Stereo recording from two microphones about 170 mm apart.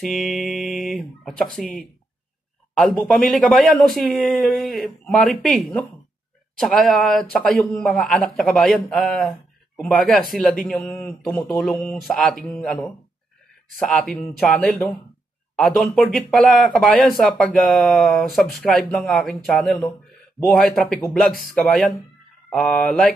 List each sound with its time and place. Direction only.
0.0 s speech: centre (ahead or behind)
10.9 s speech: 10° left (ahead or behind)
11.2 s speech: centre (ahead or behind)